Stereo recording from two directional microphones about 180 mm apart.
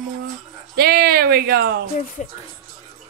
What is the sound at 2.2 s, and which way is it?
Speech, 40° left (ahead or behind).